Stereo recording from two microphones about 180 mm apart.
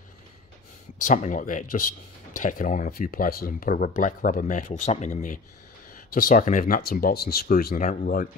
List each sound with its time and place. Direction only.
0.9 s speech: 45° left (ahead or behind)